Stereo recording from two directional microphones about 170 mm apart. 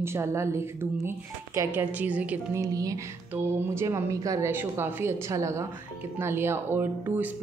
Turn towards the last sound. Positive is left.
turn(degrees=-10)  # may be behind; listen again after turning